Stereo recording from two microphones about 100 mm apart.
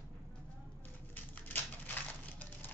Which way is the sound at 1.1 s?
15° left (ahead or behind).